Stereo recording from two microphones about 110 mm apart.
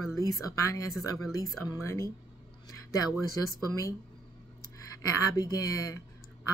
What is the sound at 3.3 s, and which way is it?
Speech, 30° left (ahead or behind).